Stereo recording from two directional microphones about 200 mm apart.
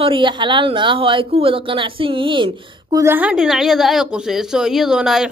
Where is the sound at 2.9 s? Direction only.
10° right (ahead or behind).